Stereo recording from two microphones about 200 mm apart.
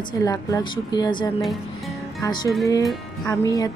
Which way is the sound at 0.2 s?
15° left (ahead or behind).